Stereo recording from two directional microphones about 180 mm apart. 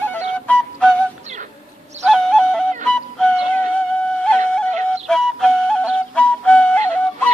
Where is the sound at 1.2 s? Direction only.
40° right (ahead or behind).